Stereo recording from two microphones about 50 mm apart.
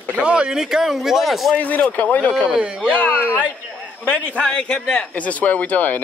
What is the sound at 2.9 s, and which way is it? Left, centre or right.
A man's voice, left.